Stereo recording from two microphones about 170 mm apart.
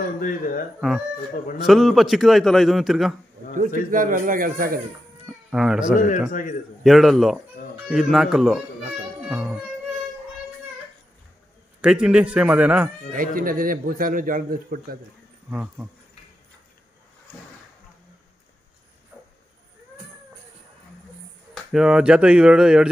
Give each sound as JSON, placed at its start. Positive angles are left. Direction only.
{"t": 0.7, "sound": "a man's voice", "side_deg": 0}
{"t": 3.5, "sound": "a man's voice", "side_deg": -50}
{"t": 5.5, "sound": "a man's voice", "side_deg": -5}
{"t": 5.9, "sound": "a man's voice", "side_deg": 50}
{"t": 6.8, "sound": "a man's voice", "side_deg": 0}
{"t": 9.3, "sound": "music", "side_deg": -10}
{"t": 11.8, "sound": "a man's voice", "side_deg": -5}
{"t": 13.1, "sound": "a man's voice", "side_deg": -55}
{"t": 15.5, "sound": "speech", "side_deg": -10}
{"t": 21.7, "sound": "a man's voice", "side_deg": -5}